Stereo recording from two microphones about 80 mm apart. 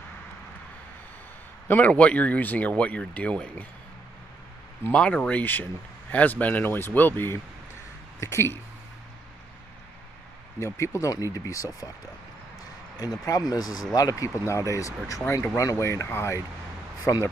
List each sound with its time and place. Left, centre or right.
1.7 s speech: centre
4.9 s speech: centre
5.4 s speech: left
10.6 s speech: left
13.2 s speech: left